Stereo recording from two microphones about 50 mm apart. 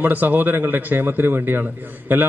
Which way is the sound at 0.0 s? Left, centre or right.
Right.